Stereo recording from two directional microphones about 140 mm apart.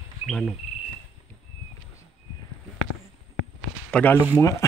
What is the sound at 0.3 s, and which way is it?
Speech, 5° left (ahead or behind).